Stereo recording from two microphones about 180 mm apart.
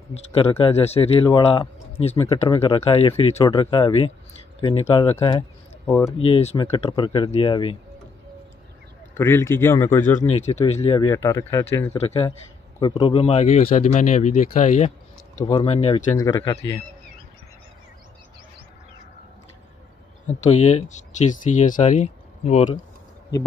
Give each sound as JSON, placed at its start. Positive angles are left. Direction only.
{"t": 0.1, "sound": "speech", "side_deg": 30}
{"t": 5.9, "sound": "a man's voice", "side_deg": 15}
{"t": 6.1, "sound": "speech", "side_deg": 30}
{"t": 9.1, "sound": "a man's voice", "side_deg": 15}
{"t": 10.2, "sound": "speech", "side_deg": 40}
{"t": 10.6, "sound": "speech", "side_deg": 30}
{"t": 11.1, "sound": "a man's voice", "side_deg": 15}
{"t": 12.0, "sound": "speech", "side_deg": 35}
{"t": 12.8, "sound": "speech", "side_deg": 25}
{"t": 15.4, "sound": "speech", "side_deg": 30}
{"t": 16.2, "sound": "speech", "side_deg": 20}
{"t": 20.2, "sound": "speech", "side_deg": 40}